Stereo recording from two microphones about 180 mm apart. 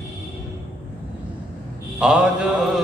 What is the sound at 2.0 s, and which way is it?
Mantra, 5° right (ahead or behind).